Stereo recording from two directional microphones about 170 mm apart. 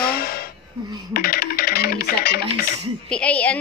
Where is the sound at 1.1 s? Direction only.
60° left (ahead or behind).